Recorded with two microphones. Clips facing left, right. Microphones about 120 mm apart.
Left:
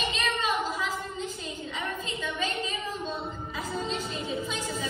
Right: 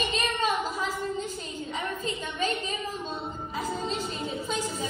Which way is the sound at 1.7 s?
45° right (ahead or behind).